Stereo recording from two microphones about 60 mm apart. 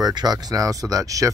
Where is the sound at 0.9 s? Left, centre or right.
Right.